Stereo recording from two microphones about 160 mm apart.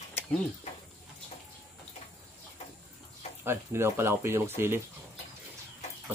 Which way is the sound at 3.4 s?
15° right (ahead or behind).